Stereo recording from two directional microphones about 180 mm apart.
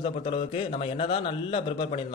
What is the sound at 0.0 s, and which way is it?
A man's voice, 30° left (ahead or behind).